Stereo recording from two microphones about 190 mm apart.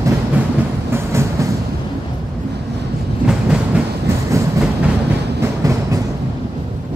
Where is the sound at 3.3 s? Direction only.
5° right (ahead or behind).